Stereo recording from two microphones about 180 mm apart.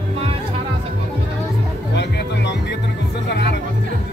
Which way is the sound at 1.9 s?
70° left (ahead or behind).